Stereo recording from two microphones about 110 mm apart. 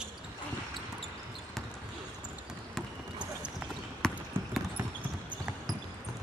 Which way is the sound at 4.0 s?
5° left (ahead or behind).